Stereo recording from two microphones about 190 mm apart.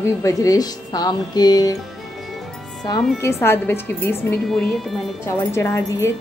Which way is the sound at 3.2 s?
15° left (ahead or behind).